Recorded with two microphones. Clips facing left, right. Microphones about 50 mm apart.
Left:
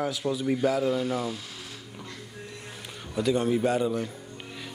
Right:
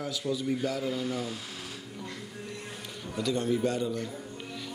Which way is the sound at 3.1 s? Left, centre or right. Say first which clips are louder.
Left 4 dB; left.